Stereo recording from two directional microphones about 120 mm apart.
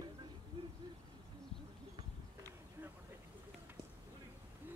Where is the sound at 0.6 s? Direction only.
50° right (ahead or behind).